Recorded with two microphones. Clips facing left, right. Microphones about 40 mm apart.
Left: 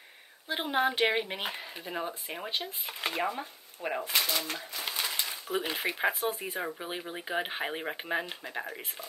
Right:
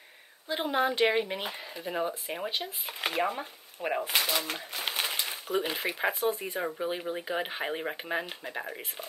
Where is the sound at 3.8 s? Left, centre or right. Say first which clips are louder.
Right 2 dB; right.